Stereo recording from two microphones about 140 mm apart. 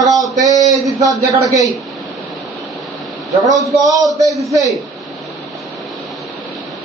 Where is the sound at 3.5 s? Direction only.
Centre (ahead or behind).